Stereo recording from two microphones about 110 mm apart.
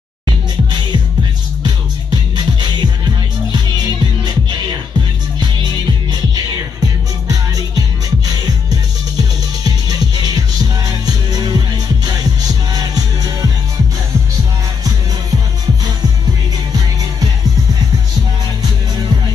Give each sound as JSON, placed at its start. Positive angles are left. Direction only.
{"t": 1.6, "sound": "music", "side_deg": -40}
{"t": 7.2, "sound": "music", "side_deg": -35}
{"t": 9.7, "sound": "music", "side_deg": -35}